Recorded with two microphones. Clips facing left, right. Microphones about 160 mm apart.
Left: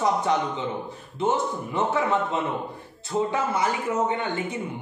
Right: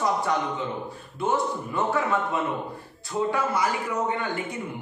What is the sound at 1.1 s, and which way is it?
Speech, 20° left (ahead or behind).